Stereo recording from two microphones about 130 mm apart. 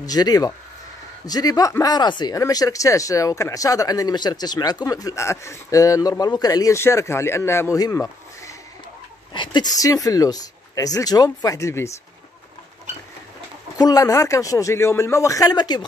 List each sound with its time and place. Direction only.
0.0 s speech: 30° left (ahead or behind)
9.3 s speech: 35° left (ahead or behind)
13.7 s speech: 30° left (ahead or behind)